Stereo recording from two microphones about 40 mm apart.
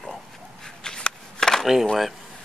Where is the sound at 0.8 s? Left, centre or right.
Centre.